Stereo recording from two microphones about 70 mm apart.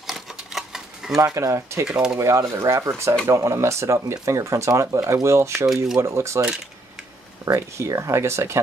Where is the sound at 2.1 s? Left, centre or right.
Right.